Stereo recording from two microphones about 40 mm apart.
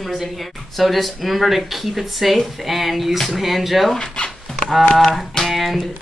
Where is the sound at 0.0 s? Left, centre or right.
Centre.